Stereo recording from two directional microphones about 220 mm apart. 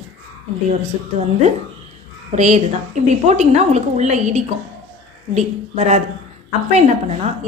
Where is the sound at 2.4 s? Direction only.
30° right (ahead or behind).